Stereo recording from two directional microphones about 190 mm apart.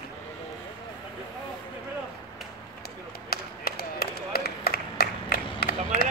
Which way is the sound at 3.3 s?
55° left (ahead or behind).